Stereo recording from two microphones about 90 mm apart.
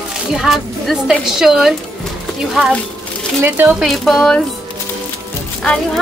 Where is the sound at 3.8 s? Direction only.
Centre (ahead or behind).